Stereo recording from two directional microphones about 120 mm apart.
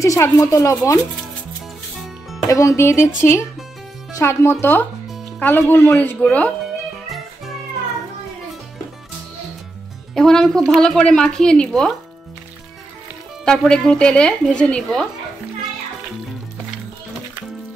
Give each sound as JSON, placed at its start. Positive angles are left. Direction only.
{"t": 0.0, "sound": "speech", "side_deg": 25}
{"t": 2.4, "sound": "speech", "side_deg": 25}
{"t": 4.2, "sound": "speech", "side_deg": 20}
{"t": 10.1, "sound": "a woman's voice", "side_deg": 5}
{"t": 13.5, "sound": "speech", "side_deg": 5}